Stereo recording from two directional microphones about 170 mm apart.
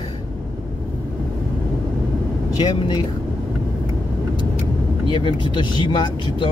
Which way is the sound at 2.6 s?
25° left (ahead or behind).